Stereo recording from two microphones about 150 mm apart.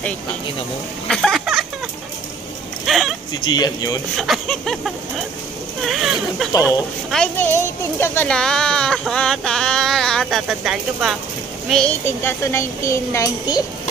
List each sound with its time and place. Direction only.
1.0 s a sound: 5° left (ahead or behind)
2.9 s speech: centre (ahead or behind)
3.3 s speech: 25° left (ahead or behind)
4.2 s speech: centre (ahead or behind)
7.3 s speech: 15° left (ahead or behind); by 11.1 s 5° right (ahead or behind)
11.7 s speech: 10° left (ahead or behind); by 13.7 s 25° left (ahead or behind)